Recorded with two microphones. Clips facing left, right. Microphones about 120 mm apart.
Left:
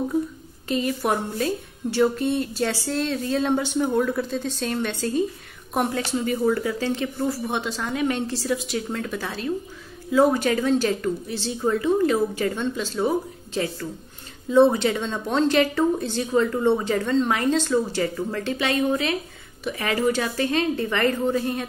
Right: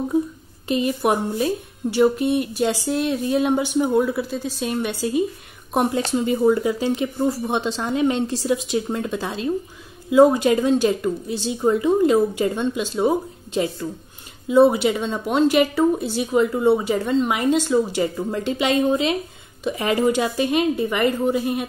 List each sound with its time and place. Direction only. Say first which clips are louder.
0.7 s a woman's voice: right 3 dB; 20° right (ahead or behind)